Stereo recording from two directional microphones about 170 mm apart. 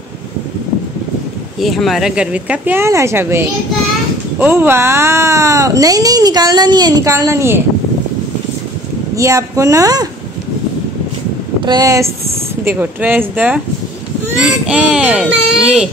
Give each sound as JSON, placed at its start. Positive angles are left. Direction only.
{"t": 1.6, "sound": "speech", "side_deg": 0}
{"t": 9.1, "sound": "speech", "side_deg": -20}
{"t": 11.6, "sound": "a child's voice", "side_deg": -20}